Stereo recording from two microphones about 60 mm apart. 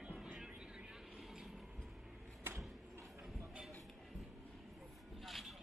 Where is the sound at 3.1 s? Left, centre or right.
Centre.